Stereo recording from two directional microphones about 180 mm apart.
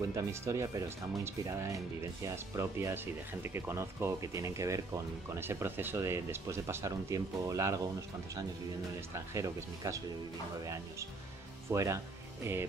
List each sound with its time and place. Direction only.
0.1 s speech: 20° right (ahead or behind)
9.3 s speech: 15° right (ahead or behind)